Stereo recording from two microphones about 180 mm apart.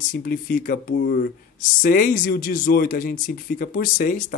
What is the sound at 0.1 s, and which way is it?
Speech, 50° left (ahead or behind).